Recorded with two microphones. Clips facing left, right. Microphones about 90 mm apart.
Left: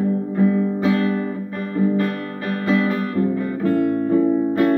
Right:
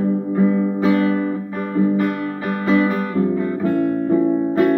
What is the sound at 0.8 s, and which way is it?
Guitar, 25° right (ahead or behind).